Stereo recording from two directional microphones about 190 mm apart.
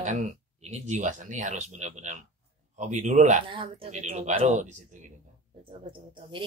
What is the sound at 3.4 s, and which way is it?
A woman's voice, 30° right (ahead or behind).